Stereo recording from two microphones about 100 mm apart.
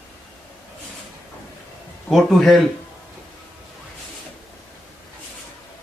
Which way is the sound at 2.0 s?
5° left (ahead or behind).